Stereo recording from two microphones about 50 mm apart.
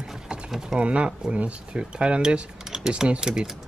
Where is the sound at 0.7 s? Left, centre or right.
Right.